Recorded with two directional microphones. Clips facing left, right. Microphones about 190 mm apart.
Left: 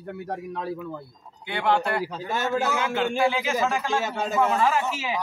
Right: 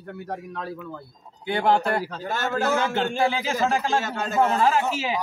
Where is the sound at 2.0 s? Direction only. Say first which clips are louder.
Left 1 dB; 10° left (ahead or behind).